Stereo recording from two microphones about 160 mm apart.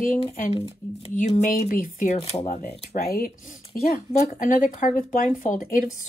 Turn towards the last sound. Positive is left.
turn(degrees=55)  # may be behind; listen again after turning